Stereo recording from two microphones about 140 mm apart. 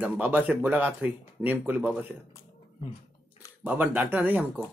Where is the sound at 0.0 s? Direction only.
10° right (ahead or behind).